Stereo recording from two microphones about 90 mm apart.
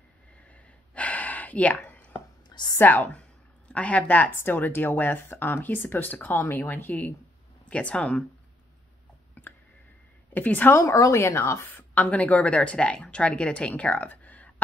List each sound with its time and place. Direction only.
0.5 s gasp: 15° left (ahead or behind)
2.8 s a woman's voice: 20° left (ahead or behind)
9.4 s a sound: 20° left (ahead or behind)
10.3 s a woman's voice: 20° left (ahead or behind)
10.8 s speech: 35° left (ahead or behind)
11.9 s a woman's voice: 15° left (ahead or behind)